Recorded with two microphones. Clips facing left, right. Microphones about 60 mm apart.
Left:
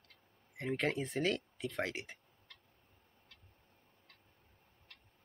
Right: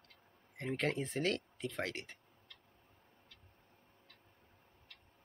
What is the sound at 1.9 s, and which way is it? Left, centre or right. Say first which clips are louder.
Speech: left 2 dB; centre.